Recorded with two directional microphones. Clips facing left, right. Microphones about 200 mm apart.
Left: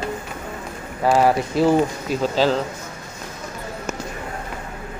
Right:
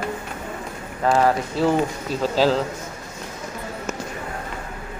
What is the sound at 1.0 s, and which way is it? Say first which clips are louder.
Speech: left 2 dB; 10° left (ahead or behind).